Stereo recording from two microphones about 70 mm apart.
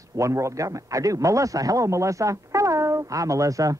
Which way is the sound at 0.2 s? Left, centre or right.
Right.